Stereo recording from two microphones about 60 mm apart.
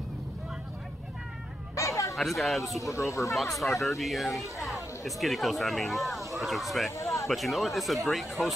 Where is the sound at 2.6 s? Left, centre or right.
Left.